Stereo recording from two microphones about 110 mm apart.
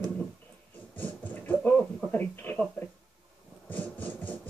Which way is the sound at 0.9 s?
15° left (ahead or behind).